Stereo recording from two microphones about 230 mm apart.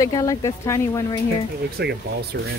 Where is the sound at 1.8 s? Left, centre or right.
Right.